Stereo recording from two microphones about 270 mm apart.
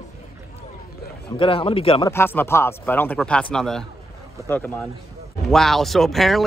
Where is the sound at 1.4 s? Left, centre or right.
Centre.